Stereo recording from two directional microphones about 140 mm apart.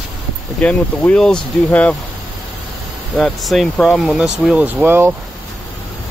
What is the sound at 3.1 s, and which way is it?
Speech, 5° left (ahead or behind).